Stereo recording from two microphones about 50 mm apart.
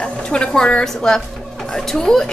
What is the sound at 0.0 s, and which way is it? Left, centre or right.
A woman's voice, centre.